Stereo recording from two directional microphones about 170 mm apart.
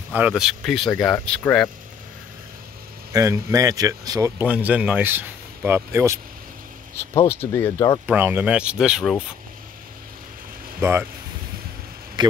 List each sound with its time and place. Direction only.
0.1 s speech: 5° right (ahead or behind)
3.1 s speech: 20° right (ahead or behind)
4.5 s speech: 10° right (ahead or behind)
7.2 s speech: 15° left (ahead or behind)
8.1 s speech: 10° right (ahead or behind)
10.8 s speech: 15° right (ahead or behind)
12.2 s a sound: 25° right (ahead or behind)